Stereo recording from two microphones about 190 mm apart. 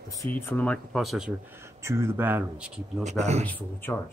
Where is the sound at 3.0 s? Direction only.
35° right (ahead or behind).